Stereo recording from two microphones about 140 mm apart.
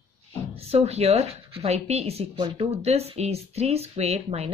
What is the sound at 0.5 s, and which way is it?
Speech, 45° right (ahead or behind).